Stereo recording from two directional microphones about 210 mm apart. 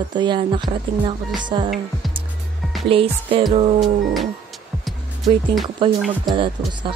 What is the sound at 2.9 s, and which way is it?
Speech, 25° right (ahead or behind).